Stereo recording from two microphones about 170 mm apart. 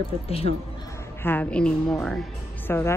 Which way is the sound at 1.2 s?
10° left (ahead or behind).